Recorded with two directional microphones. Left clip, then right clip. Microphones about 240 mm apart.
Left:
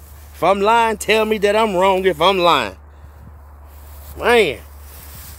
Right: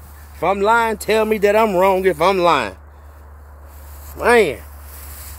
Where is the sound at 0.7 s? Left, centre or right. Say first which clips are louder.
Left 1 dB; centre.